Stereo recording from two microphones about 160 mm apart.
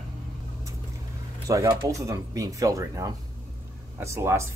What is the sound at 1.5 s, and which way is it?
Speech, 20° right (ahead or behind).